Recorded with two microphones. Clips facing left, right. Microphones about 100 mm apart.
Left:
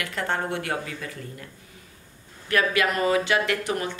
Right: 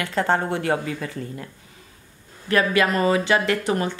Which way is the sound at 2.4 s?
30° right (ahead or behind).